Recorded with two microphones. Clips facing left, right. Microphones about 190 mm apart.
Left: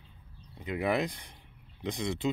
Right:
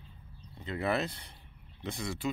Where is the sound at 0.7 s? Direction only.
15° left (ahead or behind).